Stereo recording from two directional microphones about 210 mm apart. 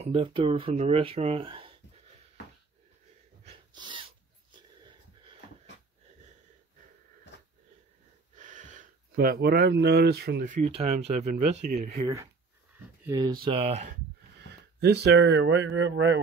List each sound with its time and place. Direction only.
0.0 s speech: 25° right (ahead or behind)
3.4 s a sound: 20° right (ahead or behind)
8.4 s speech: 35° right (ahead or behind)
13.0 s speech: 20° right (ahead or behind)
14.8 s a man's voice: 50° right (ahead or behind)